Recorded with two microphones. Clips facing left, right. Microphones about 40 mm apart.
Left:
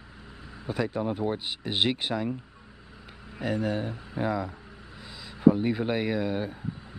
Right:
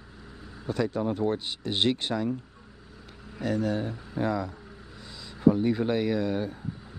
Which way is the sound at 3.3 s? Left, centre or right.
Centre.